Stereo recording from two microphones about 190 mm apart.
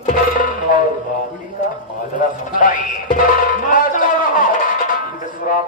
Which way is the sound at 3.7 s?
45° left (ahead or behind).